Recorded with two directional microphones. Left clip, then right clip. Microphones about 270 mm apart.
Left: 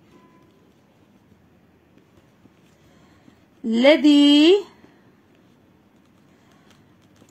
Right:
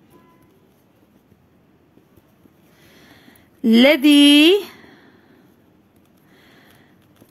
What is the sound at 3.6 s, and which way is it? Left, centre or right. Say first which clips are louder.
A woman's voice: right 2 dB; right.